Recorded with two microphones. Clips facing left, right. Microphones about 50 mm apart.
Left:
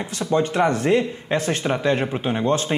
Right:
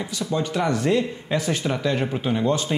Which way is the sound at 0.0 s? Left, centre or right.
Left.